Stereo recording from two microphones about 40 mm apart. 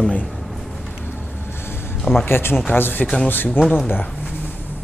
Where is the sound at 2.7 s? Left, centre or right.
Left.